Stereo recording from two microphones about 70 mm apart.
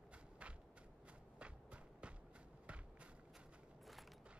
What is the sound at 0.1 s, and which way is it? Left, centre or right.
Walk, centre.